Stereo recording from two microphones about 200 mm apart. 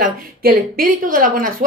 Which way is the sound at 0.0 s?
45° right (ahead or behind).